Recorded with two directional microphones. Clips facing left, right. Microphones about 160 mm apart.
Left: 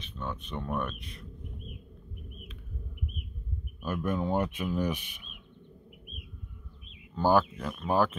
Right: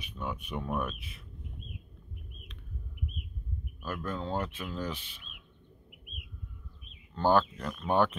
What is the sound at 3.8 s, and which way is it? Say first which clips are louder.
Speech: left 5 dB; 15° left (ahead or behind).